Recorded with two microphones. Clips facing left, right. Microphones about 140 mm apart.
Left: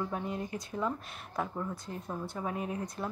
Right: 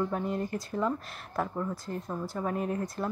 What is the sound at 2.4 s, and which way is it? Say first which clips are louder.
Speech: right 5 dB; 5° left (ahead or behind).